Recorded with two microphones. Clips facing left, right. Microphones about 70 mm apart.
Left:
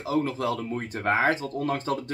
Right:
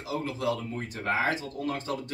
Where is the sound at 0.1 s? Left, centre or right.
Left.